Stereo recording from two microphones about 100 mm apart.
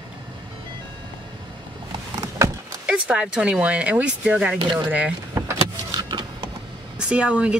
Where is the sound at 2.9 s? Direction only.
10° right (ahead or behind).